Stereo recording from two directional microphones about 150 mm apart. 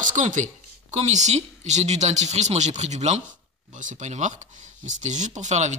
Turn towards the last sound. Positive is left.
turn(degrees=-50)  # may be behind; listen again after turning